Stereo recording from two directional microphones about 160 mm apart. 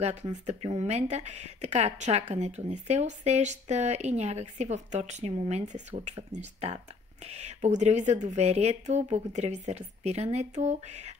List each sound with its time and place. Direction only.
0.7 s speech: 45° right (ahead or behind)